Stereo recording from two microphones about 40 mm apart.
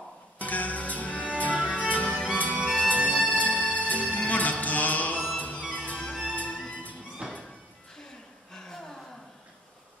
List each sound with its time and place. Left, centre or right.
0.4 s music: left
7.2 s music: right
8.5 s a sound: centre